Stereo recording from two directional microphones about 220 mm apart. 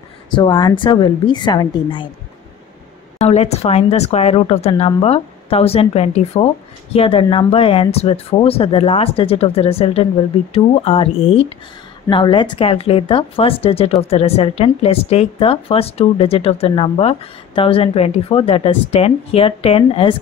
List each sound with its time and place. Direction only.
0.4 s speech: 20° left (ahead or behind)
3.3 s speech: 30° left (ahead or behind)